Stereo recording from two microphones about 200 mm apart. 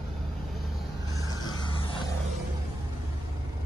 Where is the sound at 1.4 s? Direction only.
25° left (ahead or behind).